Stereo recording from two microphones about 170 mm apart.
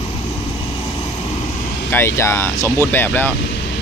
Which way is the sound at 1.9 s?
15° left (ahead or behind).